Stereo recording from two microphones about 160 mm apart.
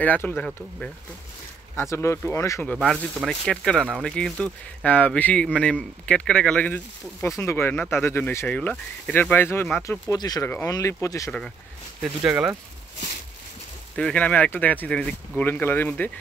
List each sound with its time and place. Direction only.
0.0 s speech: 10° left (ahead or behind)
1.8 s speech: 15° left (ahead or behind)
3.2 s speech: 5° left (ahead or behind); by 11.3 s 20° left (ahead or behind)
12.0 s speech: 5° right (ahead or behind)
13.9 s speech: 10° left (ahead or behind)